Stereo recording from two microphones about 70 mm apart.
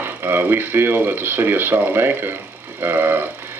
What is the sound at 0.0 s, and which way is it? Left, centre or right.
Speech, right.